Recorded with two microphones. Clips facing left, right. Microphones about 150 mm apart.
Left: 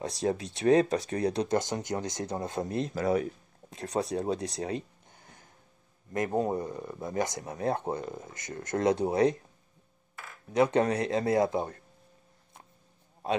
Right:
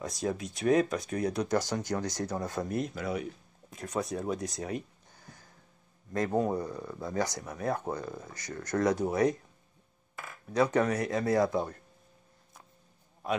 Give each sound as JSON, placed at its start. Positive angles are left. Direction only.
{"t": 0.0, "sound": "speech", "side_deg": 30}
{"t": 2.9, "sound": "speech", "side_deg": 40}
{"t": 10.5, "sound": "speech", "side_deg": 25}